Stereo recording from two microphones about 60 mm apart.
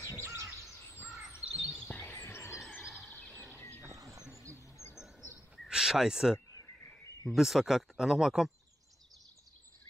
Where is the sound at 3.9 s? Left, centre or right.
Right.